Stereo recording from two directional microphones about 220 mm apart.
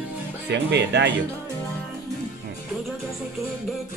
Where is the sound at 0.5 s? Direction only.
50° right (ahead or behind).